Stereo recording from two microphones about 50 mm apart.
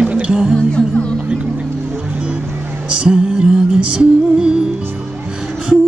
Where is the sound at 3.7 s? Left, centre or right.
Right.